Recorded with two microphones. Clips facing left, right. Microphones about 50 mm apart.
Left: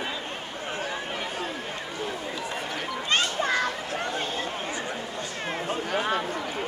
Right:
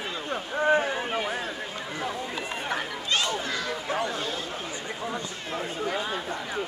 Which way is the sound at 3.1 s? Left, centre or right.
Left.